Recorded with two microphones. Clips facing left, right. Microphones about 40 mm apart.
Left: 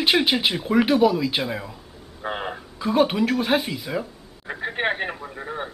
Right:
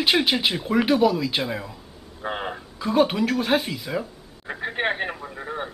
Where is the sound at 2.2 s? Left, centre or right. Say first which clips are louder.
Even; centre.